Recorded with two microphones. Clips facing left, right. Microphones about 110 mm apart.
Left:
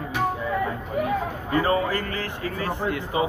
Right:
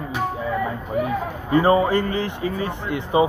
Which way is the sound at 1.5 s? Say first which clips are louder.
Right 6 dB; 25° right (ahead or behind).